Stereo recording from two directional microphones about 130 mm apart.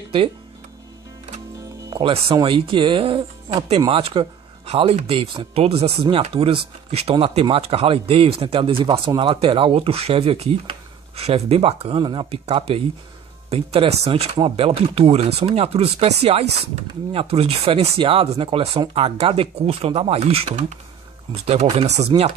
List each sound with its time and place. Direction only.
1.9 s speech: 40° right (ahead or behind); by 22.3 s 55° right (ahead or behind)